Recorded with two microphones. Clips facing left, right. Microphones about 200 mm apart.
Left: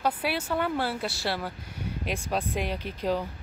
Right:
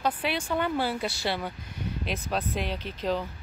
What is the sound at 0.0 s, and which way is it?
Speech, 10° left (ahead or behind).